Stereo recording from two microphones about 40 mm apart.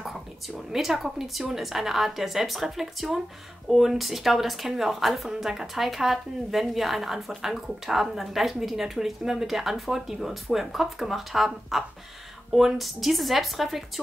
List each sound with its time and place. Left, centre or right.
0.1 s a woman's voice: centre
5.3 s a woman's voice: centre